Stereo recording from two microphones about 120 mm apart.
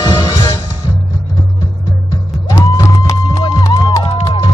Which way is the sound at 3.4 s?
40° left (ahead or behind).